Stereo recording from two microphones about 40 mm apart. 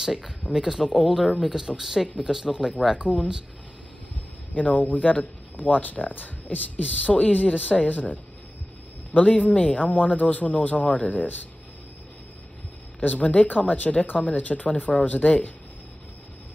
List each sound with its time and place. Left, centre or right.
0.0 s a sound: centre
0.5 s speech: centre
3.0 s speech: right
4.6 s speech: left
13.0 s speech: left